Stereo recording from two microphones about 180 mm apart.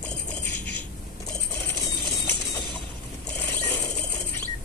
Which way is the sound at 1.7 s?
15° left (ahead or behind).